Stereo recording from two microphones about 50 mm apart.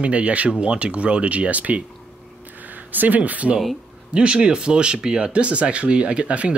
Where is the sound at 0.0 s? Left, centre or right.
Right.